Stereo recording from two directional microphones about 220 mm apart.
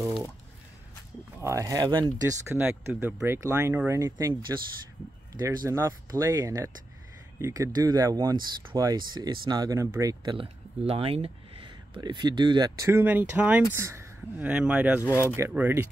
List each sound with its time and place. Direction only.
1.4 s speech: 15° right (ahead or behind)